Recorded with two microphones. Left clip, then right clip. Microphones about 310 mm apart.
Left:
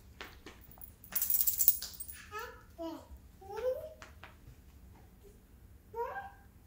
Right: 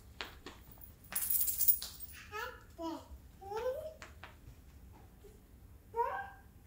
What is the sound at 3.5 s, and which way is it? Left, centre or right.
Babbling, centre.